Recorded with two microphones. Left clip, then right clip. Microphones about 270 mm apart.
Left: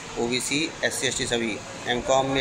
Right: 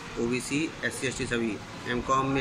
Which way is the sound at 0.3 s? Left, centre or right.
Centre.